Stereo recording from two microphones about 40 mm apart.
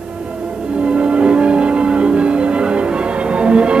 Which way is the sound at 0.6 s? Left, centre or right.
Right.